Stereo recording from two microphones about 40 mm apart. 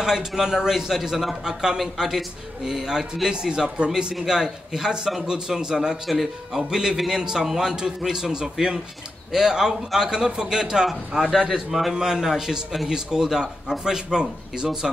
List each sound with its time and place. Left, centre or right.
0.0 s a man's voice: centre
6.0 s a man's voice: centre
6.7 s a man's voice: centre
10.9 s a man's voice: centre